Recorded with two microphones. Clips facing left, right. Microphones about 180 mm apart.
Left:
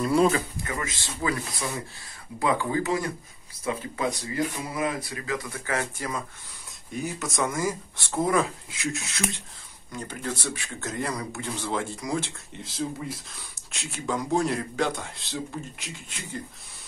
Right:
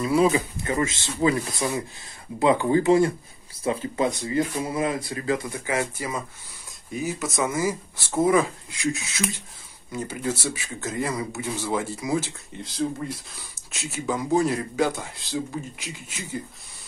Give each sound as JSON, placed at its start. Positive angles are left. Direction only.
{"t": 0.0, "sound": "speech", "side_deg": 0}
{"t": 0.7, "sound": "speech", "side_deg": -25}
{"t": 5.5, "sound": "speech", "side_deg": -15}